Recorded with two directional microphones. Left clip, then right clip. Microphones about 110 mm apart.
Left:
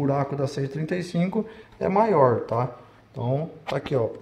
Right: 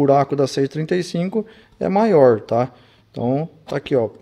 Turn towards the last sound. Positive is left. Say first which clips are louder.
# right 5 dB
turn(degrees=-20)  # may be behind; listen again after turning